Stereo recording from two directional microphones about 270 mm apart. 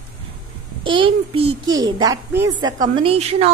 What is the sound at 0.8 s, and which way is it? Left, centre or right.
A woman's voice, centre.